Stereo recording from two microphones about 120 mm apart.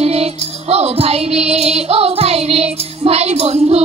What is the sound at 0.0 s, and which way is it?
Music, 60° right (ahead or behind).